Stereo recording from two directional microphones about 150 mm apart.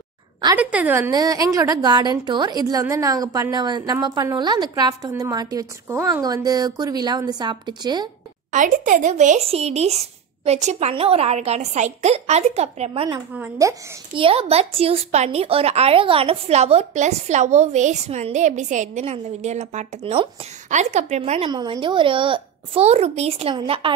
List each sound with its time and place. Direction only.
0.6 s a woman's voice: 10° right (ahead or behind); by 8.1 s 30° right (ahead or behind)
8.5 s speech: 60° right (ahead or behind); by 13.2 s 40° right (ahead or behind)
13.3 s speech: 15° right (ahead or behind)
14.1 s speech: 40° right (ahead or behind)
21.5 s a woman's voice: 30° right (ahead or behind)
23.5 s a woman's voice: 30° right (ahead or behind)